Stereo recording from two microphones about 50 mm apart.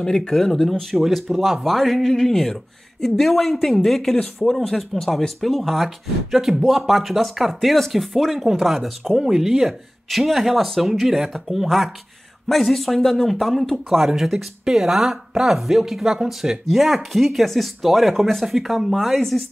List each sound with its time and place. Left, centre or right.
0.0 s speech: centre
9.1 s speech: centre